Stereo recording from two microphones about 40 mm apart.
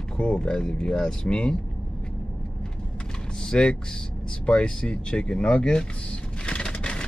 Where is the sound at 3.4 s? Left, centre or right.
Left.